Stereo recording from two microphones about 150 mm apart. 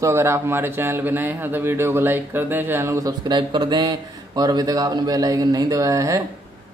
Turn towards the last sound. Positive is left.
turn(degrees=-20)  # may be behind; listen again after turning